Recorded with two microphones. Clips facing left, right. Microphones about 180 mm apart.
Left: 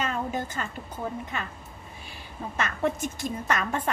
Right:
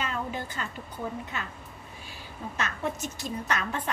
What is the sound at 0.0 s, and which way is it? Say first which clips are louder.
Music: left 3 dB; 45° left (ahead or behind).